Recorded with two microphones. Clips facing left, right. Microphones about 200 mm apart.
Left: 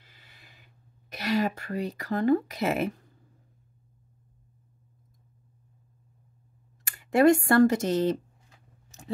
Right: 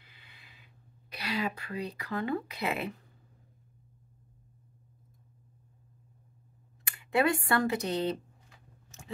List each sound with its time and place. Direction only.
0.0 s a sound: 45° left (ahead or behind)
1.1 s speech: 45° left (ahead or behind)
6.8 s speech: 45° left (ahead or behind)